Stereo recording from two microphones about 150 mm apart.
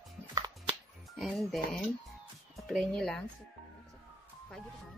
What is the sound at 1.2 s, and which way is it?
Speech, centre (ahead or behind).